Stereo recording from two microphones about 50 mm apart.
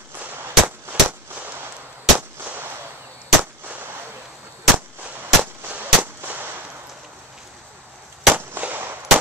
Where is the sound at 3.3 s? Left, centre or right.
Right.